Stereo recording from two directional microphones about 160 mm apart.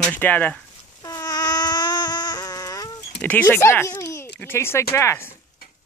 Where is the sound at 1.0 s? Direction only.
25° left (ahead or behind).